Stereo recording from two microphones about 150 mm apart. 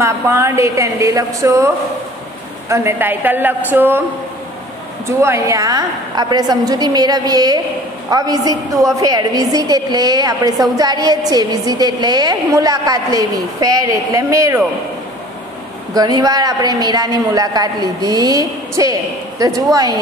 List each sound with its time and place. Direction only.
0.0 s a woman's voice: 20° right (ahead or behind)
2.7 s a woman's voice: 15° right (ahead or behind)
5.2 s a woman's voice: 20° right (ahead or behind)
15.9 s a woman's voice: 25° right (ahead or behind)